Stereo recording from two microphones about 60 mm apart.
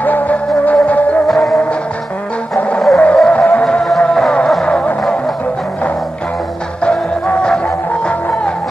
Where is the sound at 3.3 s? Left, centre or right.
Left.